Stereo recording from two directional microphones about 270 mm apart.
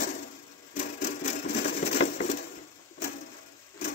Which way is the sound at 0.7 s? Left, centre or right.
Left.